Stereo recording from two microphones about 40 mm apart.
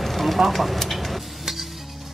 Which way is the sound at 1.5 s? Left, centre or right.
Centre.